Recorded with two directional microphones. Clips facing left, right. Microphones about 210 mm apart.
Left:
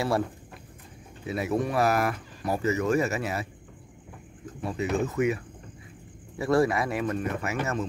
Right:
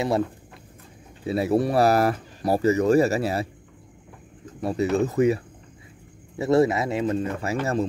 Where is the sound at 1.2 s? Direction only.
30° right (ahead or behind).